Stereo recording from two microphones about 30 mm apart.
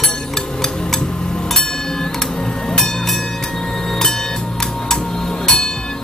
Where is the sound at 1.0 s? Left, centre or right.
Left.